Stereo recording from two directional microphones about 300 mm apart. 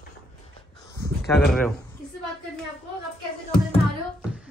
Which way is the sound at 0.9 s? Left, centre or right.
Centre.